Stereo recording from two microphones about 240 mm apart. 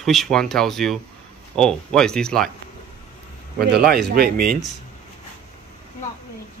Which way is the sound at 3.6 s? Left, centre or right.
Right.